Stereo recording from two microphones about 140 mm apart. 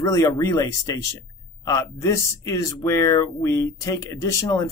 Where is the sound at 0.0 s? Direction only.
25° left (ahead or behind).